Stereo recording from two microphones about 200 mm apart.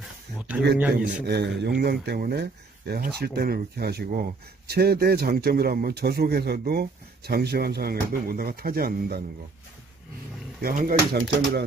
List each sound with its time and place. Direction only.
0.3 s a sound: 5° right (ahead or behind)
1.0 s speech: 55° right (ahead or behind)
10.6 s speech: 40° right (ahead or behind)